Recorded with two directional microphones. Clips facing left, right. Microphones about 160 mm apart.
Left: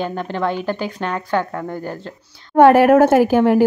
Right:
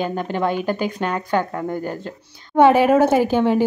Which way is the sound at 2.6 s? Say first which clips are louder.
Left 3 dB; 5° left (ahead or behind).